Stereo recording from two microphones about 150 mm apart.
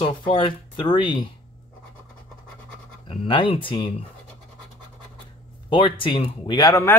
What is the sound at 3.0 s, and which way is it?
Speech, 35° left (ahead or behind).